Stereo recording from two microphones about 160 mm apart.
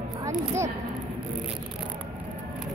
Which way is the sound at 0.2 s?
20° right (ahead or behind).